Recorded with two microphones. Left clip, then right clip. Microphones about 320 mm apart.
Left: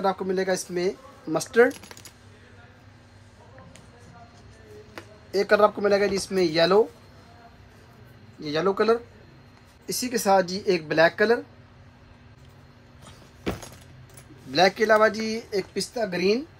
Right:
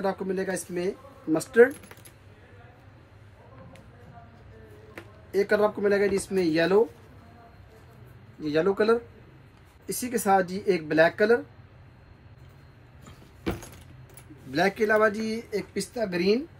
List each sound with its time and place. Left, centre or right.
0.0 s speech: centre
5.3 s speech: left
8.4 s speech: centre
13.0 s vehicle: centre
14.5 s speech: centre